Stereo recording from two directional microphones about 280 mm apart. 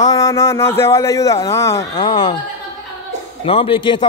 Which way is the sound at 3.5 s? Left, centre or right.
Centre.